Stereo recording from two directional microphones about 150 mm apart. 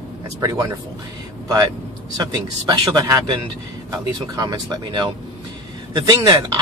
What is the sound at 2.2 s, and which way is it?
Speech, 25° right (ahead or behind).